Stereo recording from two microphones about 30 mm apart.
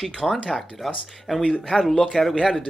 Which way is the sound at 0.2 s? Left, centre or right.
Centre.